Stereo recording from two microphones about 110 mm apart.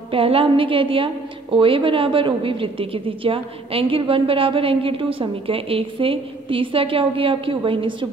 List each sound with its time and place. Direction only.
0.1 s a woman's voice: 55° right (ahead or behind)